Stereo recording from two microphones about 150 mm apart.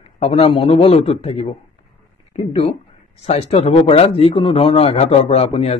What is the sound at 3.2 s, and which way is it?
Speech, 45° left (ahead or behind).